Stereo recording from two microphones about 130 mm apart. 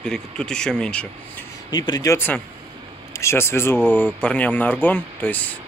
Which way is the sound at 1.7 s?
30° left (ahead or behind).